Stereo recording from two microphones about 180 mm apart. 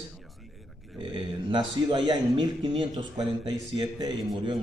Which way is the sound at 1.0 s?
25° right (ahead or behind).